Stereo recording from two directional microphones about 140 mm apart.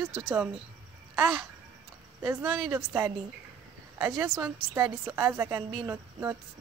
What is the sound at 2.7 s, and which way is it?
A woman's voice, 15° right (ahead or behind).